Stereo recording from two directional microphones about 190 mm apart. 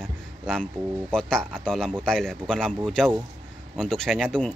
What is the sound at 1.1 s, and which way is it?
A man's voice, 5° left (ahead or behind).